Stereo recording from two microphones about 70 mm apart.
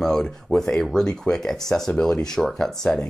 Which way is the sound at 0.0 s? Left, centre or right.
Centre.